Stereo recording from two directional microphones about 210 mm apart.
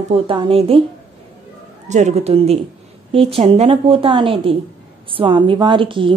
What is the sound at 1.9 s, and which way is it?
A woman's voice, 35° right (ahead or behind).